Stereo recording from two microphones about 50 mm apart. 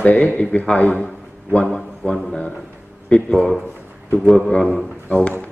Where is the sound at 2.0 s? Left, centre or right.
Left.